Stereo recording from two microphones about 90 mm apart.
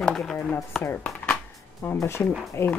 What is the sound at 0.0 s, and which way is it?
Speech, 5° left (ahead or behind).